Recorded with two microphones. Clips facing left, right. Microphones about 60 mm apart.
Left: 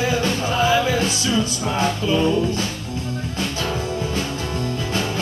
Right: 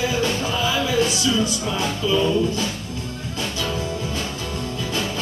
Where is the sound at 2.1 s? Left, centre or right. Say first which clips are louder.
Right 2 dB; left.